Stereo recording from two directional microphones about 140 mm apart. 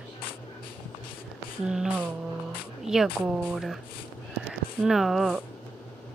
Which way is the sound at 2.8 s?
5° right (ahead or behind).